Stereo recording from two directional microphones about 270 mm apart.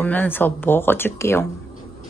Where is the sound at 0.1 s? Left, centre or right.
Centre.